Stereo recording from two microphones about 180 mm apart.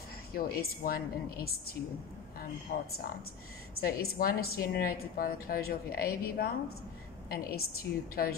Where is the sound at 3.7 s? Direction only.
60° left (ahead or behind).